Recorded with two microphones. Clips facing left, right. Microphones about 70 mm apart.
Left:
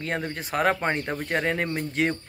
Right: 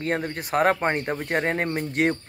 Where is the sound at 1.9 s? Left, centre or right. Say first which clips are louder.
Right 3 dB; right.